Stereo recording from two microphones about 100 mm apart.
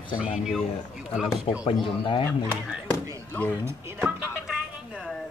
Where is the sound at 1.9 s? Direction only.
55° left (ahead or behind).